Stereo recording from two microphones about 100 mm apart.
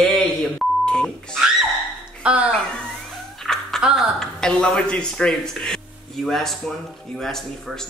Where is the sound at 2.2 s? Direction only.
15° right (ahead or behind).